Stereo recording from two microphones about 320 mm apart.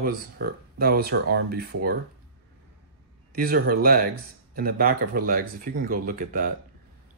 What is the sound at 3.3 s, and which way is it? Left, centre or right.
Speech, right.